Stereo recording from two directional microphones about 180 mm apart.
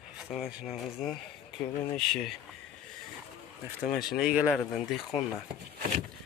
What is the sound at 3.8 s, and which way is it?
Speech, 55° left (ahead or behind).